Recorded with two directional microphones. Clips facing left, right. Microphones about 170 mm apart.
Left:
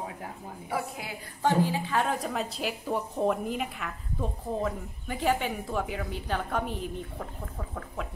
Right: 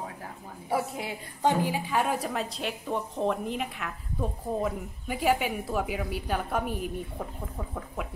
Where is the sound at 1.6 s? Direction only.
10° right (ahead or behind).